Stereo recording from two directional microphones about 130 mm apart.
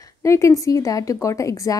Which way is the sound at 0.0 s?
25° left (ahead or behind).